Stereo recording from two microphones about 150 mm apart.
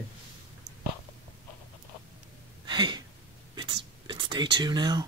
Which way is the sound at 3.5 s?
30° right (ahead or behind).